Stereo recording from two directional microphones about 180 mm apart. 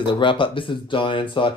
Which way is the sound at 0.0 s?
30° left (ahead or behind).